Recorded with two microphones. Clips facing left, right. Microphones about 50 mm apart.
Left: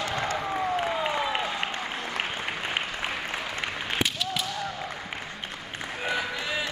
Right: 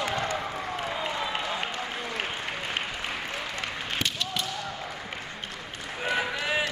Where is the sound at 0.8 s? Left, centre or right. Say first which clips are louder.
Left 4 dB; left.